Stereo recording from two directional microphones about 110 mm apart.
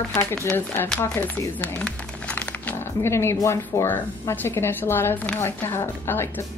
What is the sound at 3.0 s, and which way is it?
A woman's voice, 25° left (ahead or behind).